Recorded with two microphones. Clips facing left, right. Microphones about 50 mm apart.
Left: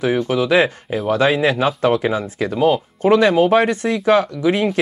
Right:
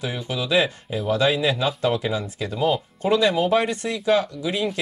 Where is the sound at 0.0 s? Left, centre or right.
Left.